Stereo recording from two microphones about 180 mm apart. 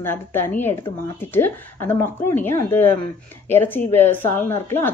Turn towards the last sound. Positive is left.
turn(degrees=10)  # may be behind; listen again after turning